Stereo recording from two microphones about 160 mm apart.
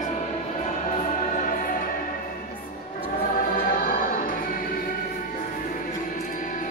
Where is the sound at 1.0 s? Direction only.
55° left (ahead or behind).